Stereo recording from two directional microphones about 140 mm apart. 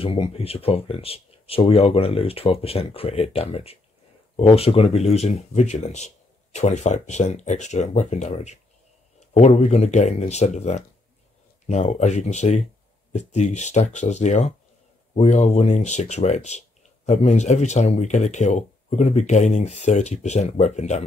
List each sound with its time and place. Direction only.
0.0 s speech: 40° left (ahead or behind)